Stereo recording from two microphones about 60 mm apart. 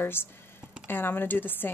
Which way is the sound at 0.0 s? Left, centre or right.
Left.